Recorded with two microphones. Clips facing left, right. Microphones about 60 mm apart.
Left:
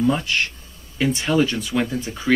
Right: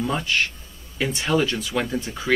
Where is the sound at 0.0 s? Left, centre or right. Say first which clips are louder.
Left 3 dB; centre.